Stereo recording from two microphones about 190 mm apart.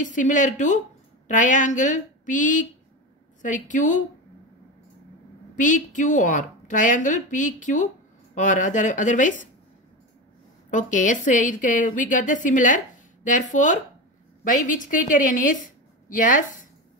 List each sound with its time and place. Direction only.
0.0 s a woman's voice: 40° left (ahead or behind)
5.6 s a woman's voice: 40° left (ahead or behind)
10.7 s a woman's voice: 40° left (ahead or behind)